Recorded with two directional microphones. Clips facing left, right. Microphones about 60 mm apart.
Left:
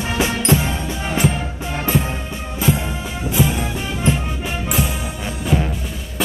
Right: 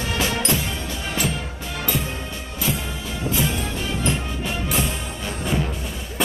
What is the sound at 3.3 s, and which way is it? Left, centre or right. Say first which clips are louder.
Music: left 6 dB; centre.